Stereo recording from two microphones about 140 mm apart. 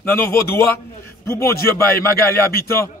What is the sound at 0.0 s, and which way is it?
A man's voice, 15° left (ahead or behind).